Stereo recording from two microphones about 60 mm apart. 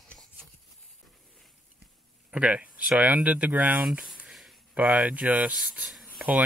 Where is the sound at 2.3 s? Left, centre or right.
Centre.